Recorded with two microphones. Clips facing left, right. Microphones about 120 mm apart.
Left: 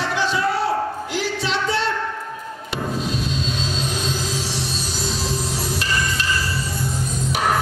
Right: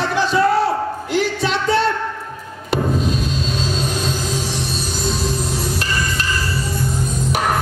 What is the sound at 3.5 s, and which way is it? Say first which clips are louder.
Music: right 4 dB; 45° right (ahead or behind).